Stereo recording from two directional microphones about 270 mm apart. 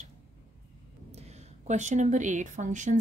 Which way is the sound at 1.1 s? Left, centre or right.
Right.